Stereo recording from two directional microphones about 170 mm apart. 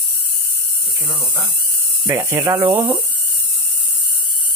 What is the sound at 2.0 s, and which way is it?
Speech, 15° right (ahead or behind).